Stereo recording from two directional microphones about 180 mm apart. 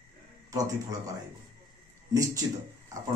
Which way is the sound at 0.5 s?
20° right (ahead or behind).